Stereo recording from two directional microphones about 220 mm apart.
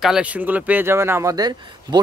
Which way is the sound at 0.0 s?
5° right (ahead or behind).